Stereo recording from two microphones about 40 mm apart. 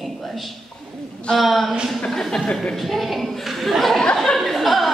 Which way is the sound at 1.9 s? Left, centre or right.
Centre.